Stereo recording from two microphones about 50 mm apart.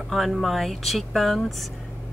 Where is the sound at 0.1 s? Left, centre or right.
Centre.